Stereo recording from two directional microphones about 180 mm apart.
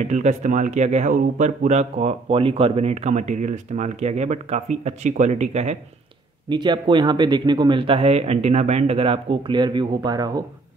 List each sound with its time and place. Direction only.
0.1 s speech: 40° right (ahead or behind)
6.5 s speech: 25° right (ahead or behind)